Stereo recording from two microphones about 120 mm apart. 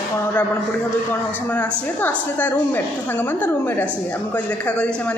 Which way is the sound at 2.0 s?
15° left (ahead or behind).